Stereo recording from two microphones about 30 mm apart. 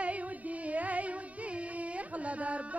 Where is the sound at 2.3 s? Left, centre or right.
Right.